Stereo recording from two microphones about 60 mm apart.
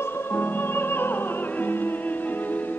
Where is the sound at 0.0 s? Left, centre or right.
Left.